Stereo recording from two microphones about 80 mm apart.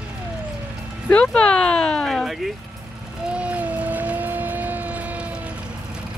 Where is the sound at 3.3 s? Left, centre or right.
Centre.